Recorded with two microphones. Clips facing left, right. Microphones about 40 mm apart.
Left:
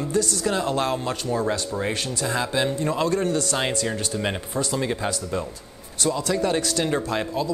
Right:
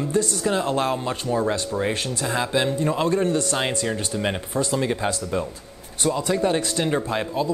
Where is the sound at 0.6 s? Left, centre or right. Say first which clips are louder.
Right 1 dB; right.